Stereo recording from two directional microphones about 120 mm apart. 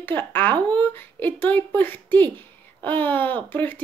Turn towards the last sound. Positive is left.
turn(degrees=15)  # may be behind; listen again after turning